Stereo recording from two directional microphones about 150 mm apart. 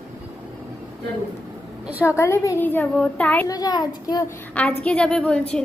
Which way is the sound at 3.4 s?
25° left (ahead or behind).